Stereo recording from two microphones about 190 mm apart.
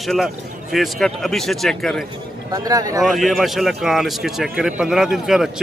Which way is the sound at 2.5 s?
20° right (ahead or behind).